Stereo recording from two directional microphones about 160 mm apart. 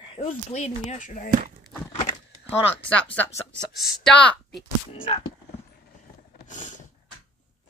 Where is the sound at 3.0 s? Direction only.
15° left (ahead or behind).